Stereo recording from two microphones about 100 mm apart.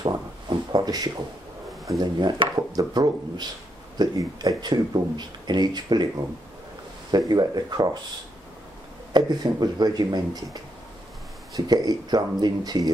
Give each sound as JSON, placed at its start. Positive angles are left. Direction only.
{"t": 0.0, "sound": "a sound", "side_deg": -45}
{"t": 2.0, "sound": "speech", "side_deg": -45}
{"t": 2.7, "sound": "speech", "side_deg": -40}
{"t": 7.1, "sound": "speech", "side_deg": -45}
{"t": 9.1, "sound": "speech", "side_deg": -45}